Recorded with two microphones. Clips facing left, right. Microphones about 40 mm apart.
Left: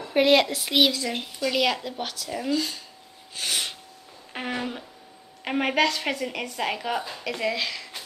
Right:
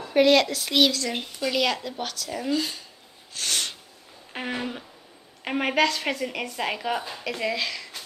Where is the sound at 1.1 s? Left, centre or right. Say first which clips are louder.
Even; centre.